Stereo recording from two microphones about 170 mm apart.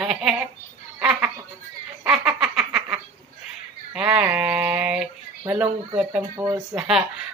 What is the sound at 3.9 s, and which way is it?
Speech, 5° right (ahead or behind).